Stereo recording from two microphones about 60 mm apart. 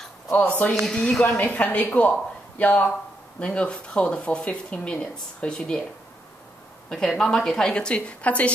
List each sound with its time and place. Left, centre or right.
0.3 s a woman's voice: left
6.9 s a woman's voice: centre